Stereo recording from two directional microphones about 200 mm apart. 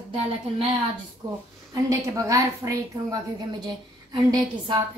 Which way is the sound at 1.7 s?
15° right (ahead or behind).